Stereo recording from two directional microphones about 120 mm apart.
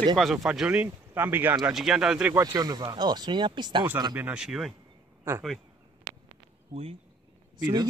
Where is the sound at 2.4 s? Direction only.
30° right (ahead or behind).